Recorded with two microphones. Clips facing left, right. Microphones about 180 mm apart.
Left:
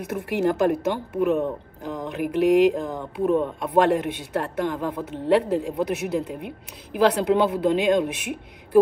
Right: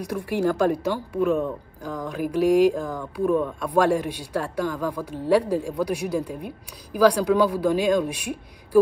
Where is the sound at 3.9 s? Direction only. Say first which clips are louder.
Left 1 dB; 60° left (ahead or behind).